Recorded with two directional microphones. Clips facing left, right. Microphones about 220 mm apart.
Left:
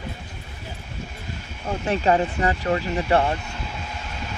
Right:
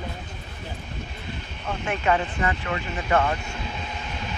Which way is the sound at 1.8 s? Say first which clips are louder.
Left 4 dB; 35° left (ahead or behind).